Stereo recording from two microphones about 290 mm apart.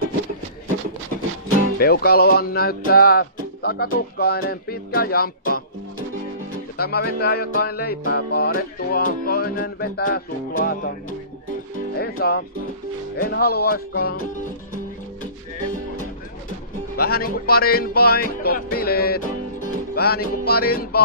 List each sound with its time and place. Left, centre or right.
1.8 s music: left
6.8 s music: left
16.9 s music: left